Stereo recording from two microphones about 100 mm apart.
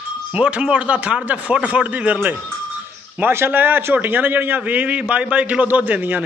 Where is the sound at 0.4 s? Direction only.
10° right (ahead or behind).